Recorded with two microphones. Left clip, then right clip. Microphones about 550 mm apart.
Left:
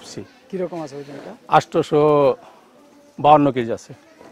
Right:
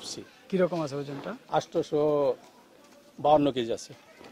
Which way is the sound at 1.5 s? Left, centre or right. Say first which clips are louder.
Left 12 dB; left.